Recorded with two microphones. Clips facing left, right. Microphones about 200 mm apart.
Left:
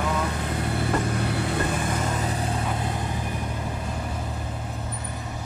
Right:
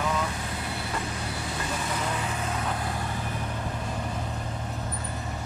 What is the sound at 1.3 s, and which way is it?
Vehicle, 60° left (ahead or behind).